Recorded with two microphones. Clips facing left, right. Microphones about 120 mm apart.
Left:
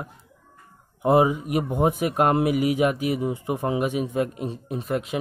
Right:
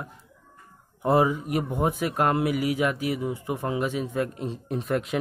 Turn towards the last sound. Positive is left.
turn(degrees=0)  # may be behind; listen again after turning